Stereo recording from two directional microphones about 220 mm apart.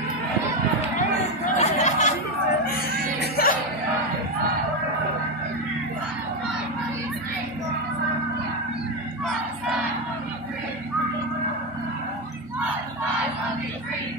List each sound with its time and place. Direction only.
1.6 s music: 30° left (ahead or behind)
3.2 s music: 45° left (ahead or behind)